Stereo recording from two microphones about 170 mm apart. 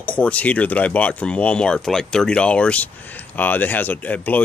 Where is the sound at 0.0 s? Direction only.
5° left (ahead or behind).